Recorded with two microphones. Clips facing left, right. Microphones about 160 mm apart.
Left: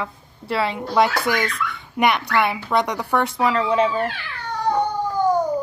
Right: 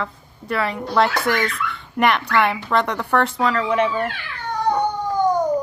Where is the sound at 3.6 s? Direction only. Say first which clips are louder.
Even; 30° left (ahead or behind).